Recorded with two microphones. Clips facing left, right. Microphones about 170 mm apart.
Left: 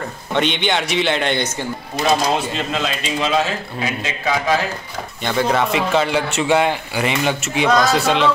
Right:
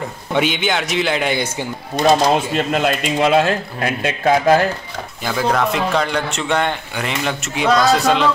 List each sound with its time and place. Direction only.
0.3 s a man's voice: 5° right (ahead or behind)
2.0 s a man's voice: 5° left (ahead or behind)
2.5 s a man's voice: 55° right (ahead or behind)
5.2 s a man's voice: centre (ahead or behind)